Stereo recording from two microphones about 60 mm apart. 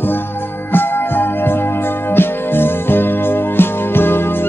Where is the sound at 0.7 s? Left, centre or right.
Left.